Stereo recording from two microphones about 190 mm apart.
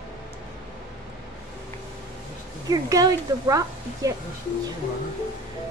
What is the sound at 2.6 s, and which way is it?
A woman's voice, 20° right (ahead or behind).